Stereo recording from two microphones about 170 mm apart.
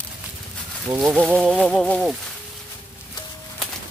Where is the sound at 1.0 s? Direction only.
Centre (ahead or behind).